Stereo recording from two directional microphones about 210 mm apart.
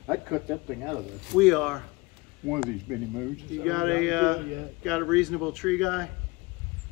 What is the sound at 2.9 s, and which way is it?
Speech, centre (ahead or behind).